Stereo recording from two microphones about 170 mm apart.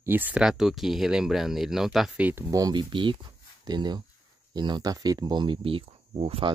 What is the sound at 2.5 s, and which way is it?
Speech, 25° right (ahead or behind).